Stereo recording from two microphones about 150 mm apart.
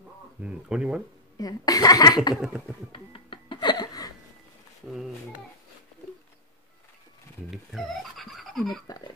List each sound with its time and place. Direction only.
0.4 s speech: 5° right (ahead or behind)
1.4 s a woman's voice: 25° left (ahead or behind)
2.9 s a sound: 35° left (ahead or behind)
7.5 s speech: centre (ahead or behind)
8.8 s a woman's voice: 25° left (ahead or behind)